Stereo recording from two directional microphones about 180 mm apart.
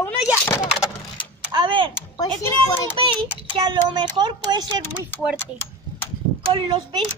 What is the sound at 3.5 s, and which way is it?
A child's voice, 25° right (ahead or behind).